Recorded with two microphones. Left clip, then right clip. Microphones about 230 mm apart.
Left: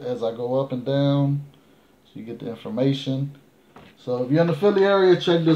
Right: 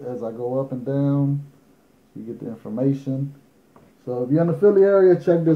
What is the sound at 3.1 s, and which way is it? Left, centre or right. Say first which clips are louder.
A man's voice: even; left.